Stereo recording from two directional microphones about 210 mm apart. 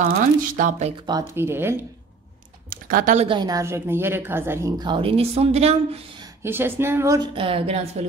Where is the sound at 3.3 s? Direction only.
20° right (ahead or behind).